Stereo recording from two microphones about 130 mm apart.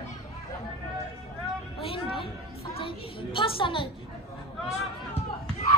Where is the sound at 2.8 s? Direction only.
40° left (ahead or behind).